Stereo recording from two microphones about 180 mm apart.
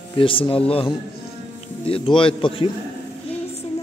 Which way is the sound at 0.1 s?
30° left (ahead or behind).